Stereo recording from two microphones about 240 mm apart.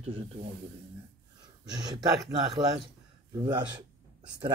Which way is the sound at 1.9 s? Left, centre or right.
Centre.